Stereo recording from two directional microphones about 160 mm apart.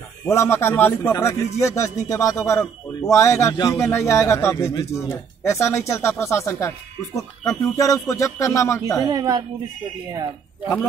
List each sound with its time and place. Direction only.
0.3 s a man's voice: 15° left (ahead or behind)
9.0 s a woman's voice: 25° right (ahead or behind)